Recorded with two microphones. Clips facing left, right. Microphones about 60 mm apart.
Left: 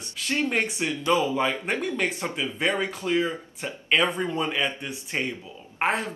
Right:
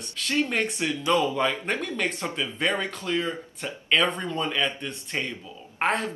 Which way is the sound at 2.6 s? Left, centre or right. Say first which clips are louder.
Left 1 dB; centre.